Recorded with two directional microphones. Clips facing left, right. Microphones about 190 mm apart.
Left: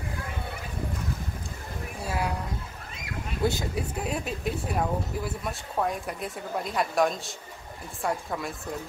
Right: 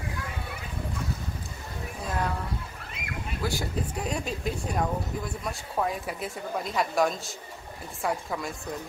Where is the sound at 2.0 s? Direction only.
10° left (ahead or behind).